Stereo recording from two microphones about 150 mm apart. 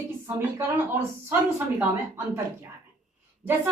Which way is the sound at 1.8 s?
15° right (ahead or behind).